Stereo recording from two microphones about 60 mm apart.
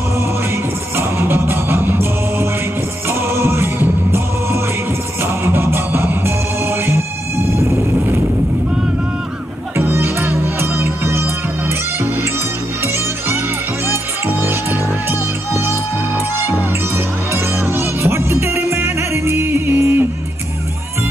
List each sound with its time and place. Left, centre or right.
0.9 s music: right
9.8 s music: right
13.8 s music: right
17.3 s music: right